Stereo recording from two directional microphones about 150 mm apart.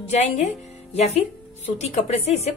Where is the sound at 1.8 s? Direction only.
45° left (ahead or behind).